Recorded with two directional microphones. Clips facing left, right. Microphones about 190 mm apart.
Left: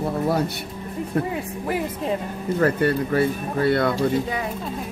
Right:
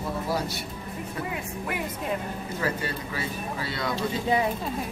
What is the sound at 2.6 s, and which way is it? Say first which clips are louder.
Speech: left 11 dB; 55° left (ahead or behind).